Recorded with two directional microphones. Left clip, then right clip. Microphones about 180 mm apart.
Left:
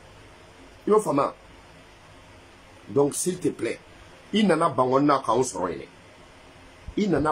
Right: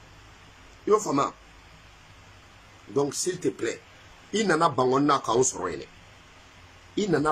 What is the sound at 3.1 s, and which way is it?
Speech, 15° left (ahead or behind).